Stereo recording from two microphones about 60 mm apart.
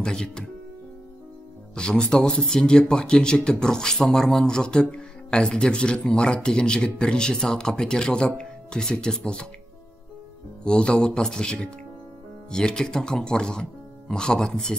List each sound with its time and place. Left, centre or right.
0.0 s speech: centre
1.8 s speech: centre
10.6 s speech: centre